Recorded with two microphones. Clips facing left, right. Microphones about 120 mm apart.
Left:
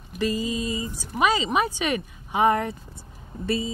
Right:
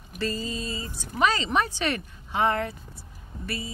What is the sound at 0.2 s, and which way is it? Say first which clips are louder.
Speech: left 5 dB; 15° left (ahead or behind).